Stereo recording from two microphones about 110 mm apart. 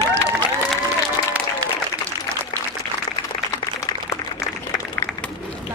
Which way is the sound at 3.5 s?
30° left (ahead or behind).